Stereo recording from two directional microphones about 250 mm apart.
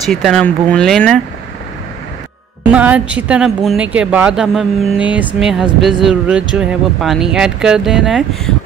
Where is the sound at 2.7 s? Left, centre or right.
Centre.